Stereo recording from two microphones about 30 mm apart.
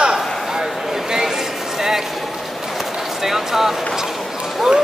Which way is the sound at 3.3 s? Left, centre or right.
Centre.